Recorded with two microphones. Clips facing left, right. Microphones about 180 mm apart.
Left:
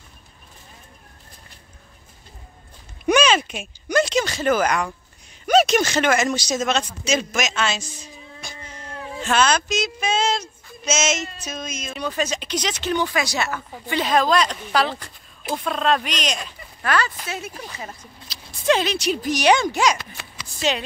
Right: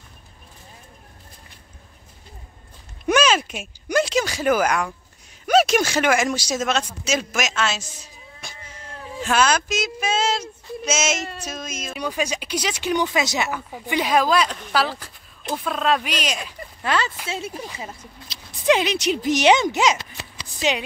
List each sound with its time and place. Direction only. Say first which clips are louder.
3.1 s a man's voice: left 1 dB; 5° right (ahead or behind)
9.2 s child singing: even; 5° right (ahead or behind)
11.4 s speech: even; 5° right (ahead or behind)
16.8 s speech: left 1 dB; 25° right (ahead or behind)
17.6 s speech: right 2 dB; 10° right (ahead or behind); by 20.4 s 30° right (ahead or behind)
20.5 s speech: even; 15° right (ahead or behind)